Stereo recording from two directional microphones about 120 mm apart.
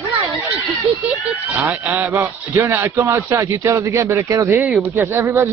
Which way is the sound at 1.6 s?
15° right (ahead or behind).